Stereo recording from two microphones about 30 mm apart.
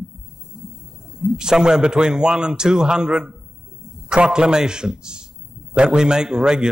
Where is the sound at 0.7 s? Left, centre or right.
Centre.